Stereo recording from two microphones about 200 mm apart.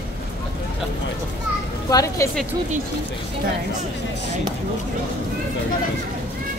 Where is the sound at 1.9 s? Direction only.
15° left (ahead or behind).